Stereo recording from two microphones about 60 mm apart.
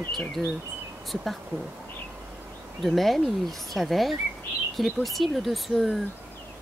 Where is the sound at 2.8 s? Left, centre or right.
Centre.